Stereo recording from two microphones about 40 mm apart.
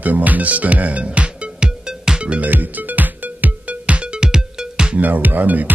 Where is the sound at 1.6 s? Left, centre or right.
Centre.